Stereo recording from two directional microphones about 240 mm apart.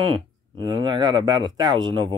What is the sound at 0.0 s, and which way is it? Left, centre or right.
Speech, right.